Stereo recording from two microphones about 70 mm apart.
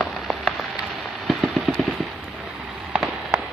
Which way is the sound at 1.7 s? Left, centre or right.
Centre.